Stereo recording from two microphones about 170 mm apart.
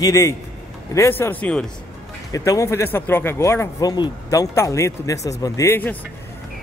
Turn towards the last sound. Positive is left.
turn(degrees=15)  # may be behind; listen again after turning